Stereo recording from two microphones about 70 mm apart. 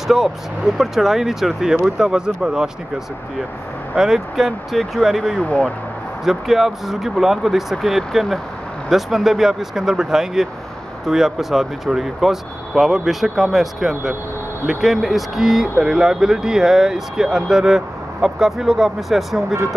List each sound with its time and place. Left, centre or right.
0.7 s speech: centre
3.9 s speech: centre
5.4 s speech: centre
6.2 s speech: centre